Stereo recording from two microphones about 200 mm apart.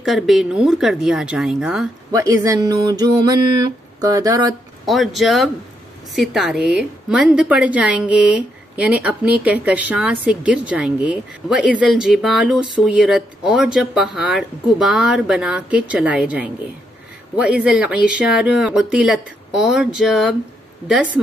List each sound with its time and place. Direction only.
0.0 s a woman's voice: centre (ahead or behind)
2.1 s a sound: 15° right (ahead or behind)
4.8 s a woman's voice: centre (ahead or behind)